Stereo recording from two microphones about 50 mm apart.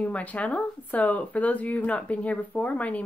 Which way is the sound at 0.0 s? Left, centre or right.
Left.